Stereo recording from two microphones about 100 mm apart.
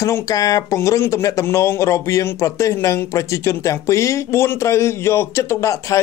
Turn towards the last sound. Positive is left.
turn(degrees=30)  # may be behind; listen again after turning